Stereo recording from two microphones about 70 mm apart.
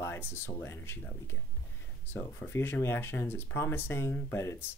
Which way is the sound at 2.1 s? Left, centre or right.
Left.